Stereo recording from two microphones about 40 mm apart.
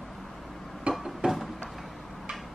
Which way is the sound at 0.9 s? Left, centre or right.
Right.